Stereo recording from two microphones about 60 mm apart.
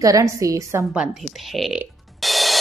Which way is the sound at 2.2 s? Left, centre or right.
Centre.